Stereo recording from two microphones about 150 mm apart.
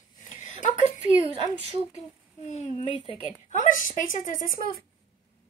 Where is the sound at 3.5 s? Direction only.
60° left (ahead or behind).